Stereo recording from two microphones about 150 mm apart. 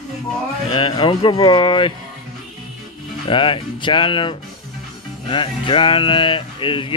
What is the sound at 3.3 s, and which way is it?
Speech, 35° left (ahead or behind).